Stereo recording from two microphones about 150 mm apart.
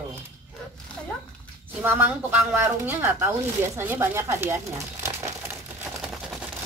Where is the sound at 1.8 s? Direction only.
15° right (ahead or behind).